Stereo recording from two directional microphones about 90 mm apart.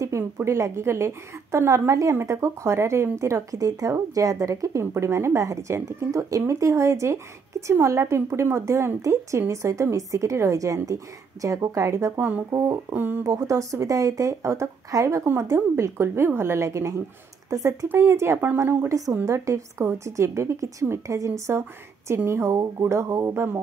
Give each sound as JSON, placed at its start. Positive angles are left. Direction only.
{"t": 0.0, "sound": "a woman's voice", "side_deg": -30}
{"t": 12.9, "sound": "a woman's voice", "side_deg": -20}
{"t": 13.2, "sound": "a woman's voice", "side_deg": -35}